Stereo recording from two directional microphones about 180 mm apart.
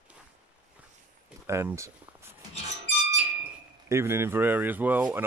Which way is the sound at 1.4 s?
15° right (ahead or behind).